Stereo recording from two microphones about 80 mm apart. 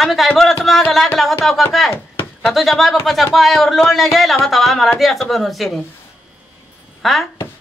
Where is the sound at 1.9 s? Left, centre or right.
Left.